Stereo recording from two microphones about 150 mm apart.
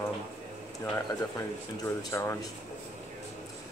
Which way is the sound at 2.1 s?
20° left (ahead or behind).